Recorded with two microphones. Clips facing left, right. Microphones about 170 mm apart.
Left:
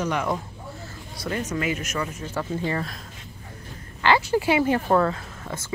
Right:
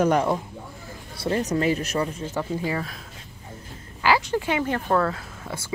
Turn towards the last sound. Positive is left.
turn(degrees=-10)  # may be behind; listen again after turning